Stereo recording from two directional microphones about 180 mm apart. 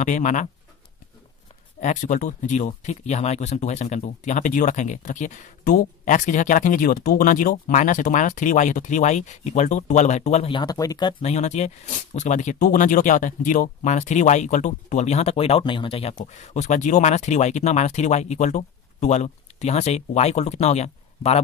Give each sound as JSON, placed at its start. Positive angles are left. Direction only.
{"t": 0.0, "sound": "speech", "side_deg": 45}
{"t": 1.8, "sound": "speech", "side_deg": 45}
{"t": 11.2, "sound": "speech", "side_deg": 40}